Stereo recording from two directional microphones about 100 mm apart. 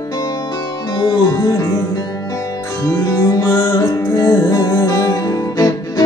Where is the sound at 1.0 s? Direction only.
40° left (ahead or behind).